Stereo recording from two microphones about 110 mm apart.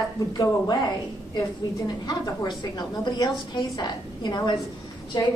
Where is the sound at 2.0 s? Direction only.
40° left (ahead or behind).